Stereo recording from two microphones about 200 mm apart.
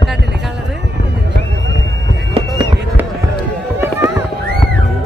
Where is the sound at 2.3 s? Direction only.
20° right (ahead or behind).